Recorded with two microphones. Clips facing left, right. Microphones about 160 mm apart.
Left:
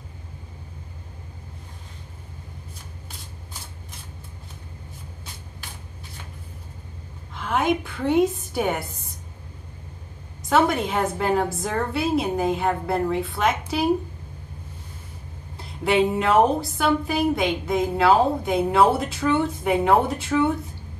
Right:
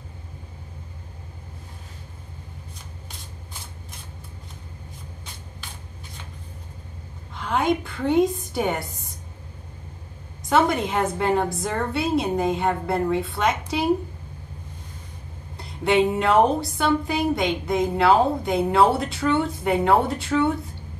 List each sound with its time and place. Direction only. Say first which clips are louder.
7.3 s a woman's voice: even; 5° left (ahead or behind)
10.6 s a woman's voice: even; 5° left (ahead or behind)
15.8 s a woman's voice: right 1 dB; 5° left (ahead or behind)